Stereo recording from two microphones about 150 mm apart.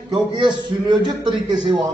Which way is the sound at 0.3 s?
30° right (ahead or behind).